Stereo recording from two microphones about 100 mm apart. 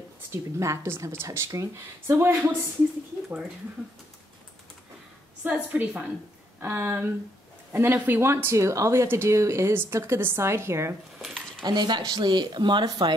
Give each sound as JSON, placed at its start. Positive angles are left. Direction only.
{"t": 0.3, "sound": "speech", "side_deg": -30}
{"t": 5.4, "sound": "a woman's voice", "side_deg": -15}
{"t": 11.1, "sound": "a sound", "side_deg": 0}
{"t": 11.6, "sound": "speech", "side_deg": -45}